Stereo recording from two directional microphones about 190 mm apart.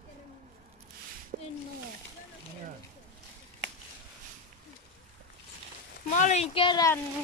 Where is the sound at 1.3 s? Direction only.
40° right (ahead or behind).